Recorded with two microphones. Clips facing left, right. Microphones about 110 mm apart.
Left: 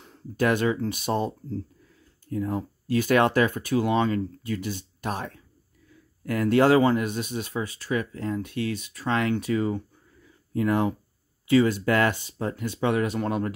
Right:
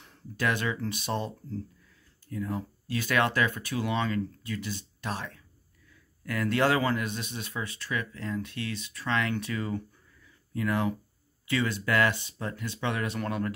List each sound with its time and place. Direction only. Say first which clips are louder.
0.0 s speech: left 6 dB; 45° left (ahead or behind); by 9.8 s 30° left (ahead or behind)
10.2 s a sound: left 6 dB; 35° left (ahead or behind)
11.4 s speech: left 9 dB; 40° left (ahead or behind)